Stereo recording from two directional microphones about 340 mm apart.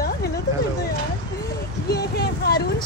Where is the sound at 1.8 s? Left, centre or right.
Left.